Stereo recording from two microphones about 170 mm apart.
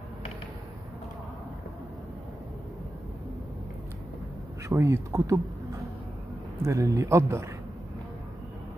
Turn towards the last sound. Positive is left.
turn(degrees=-15)  # may be behind; listen again after turning